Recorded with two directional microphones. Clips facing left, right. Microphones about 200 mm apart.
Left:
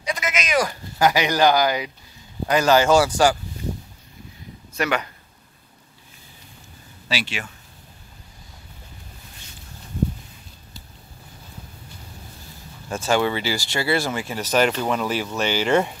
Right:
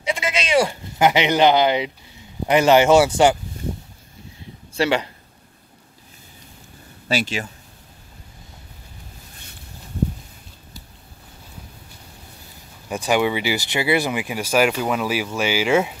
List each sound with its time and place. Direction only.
0.0 s speech: 25° right (ahead or behind)
4.7 s speech: 30° right (ahead or behind)
7.1 s speech: 45° right (ahead or behind)
12.8 s speech: 15° right (ahead or behind)